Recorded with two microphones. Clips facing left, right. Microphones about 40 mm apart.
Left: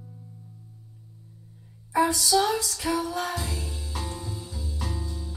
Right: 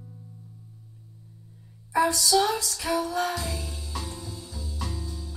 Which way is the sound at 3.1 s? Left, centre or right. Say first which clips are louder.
Right 2 dB; right.